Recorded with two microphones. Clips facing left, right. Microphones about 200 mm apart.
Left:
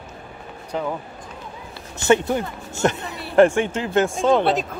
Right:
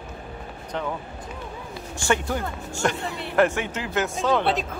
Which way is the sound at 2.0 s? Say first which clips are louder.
Left 7 dB; 20° left (ahead or behind).